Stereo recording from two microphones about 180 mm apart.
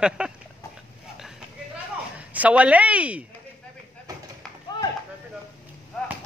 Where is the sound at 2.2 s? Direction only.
10° right (ahead or behind).